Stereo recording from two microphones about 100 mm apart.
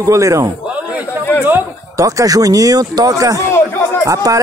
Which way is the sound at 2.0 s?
35° right (ahead or behind).